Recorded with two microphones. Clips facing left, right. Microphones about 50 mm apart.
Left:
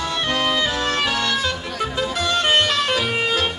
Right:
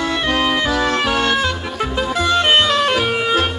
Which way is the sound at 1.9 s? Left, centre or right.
Right.